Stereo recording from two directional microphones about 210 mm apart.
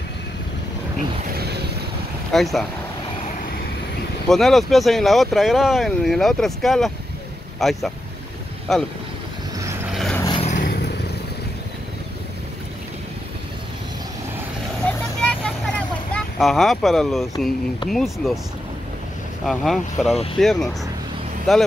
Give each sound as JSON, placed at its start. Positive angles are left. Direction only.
{"t": 1.3, "sound": "vehicle", "side_deg": -50}
{"t": 2.3, "sound": "speech", "side_deg": 0}
{"t": 4.3, "sound": "speech", "side_deg": 0}
{"t": 9.9, "sound": "vehicle", "side_deg": 5}
{"t": 10.2, "sound": "vehicle", "side_deg": 20}
{"t": 10.5, "sound": "vehicle", "side_deg": 45}
{"t": 14.9, "sound": "vehicle", "side_deg": 5}
{"t": 17.8, "sound": "speech", "side_deg": 0}
{"t": 19.4, "sound": "speech", "side_deg": 0}